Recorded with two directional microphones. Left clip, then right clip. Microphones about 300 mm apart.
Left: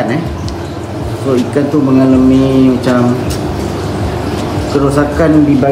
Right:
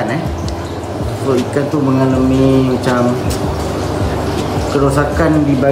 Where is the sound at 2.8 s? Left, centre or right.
Centre.